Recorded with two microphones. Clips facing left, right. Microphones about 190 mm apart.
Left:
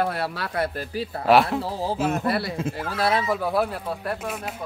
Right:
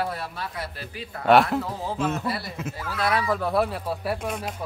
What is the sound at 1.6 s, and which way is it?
Speech, 35° left (ahead or behind).